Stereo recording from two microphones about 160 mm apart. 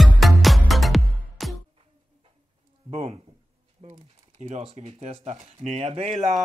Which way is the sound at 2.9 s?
40° right (ahead or behind).